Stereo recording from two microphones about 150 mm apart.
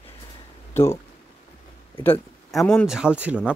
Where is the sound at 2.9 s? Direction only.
5° right (ahead or behind).